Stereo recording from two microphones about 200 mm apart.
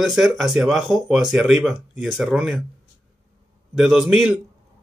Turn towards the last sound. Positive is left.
turn(degrees=0)  # may be behind; listen again after turning